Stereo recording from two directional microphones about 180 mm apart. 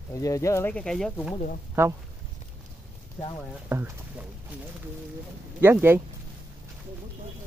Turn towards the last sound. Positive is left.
turn(degrees=-10)  # may be behind; listen again after turning